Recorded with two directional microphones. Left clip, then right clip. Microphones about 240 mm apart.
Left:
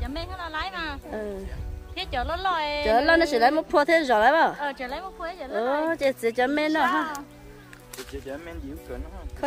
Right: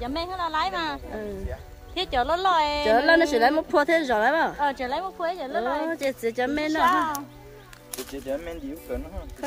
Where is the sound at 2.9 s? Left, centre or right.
Centre.